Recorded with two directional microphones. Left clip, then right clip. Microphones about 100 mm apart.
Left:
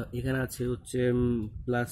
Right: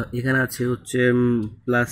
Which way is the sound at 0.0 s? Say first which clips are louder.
Right 10 dB; 15° right (ahead or behind).